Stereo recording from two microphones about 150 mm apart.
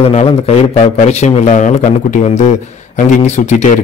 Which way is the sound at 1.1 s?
50° left (ahead or behind).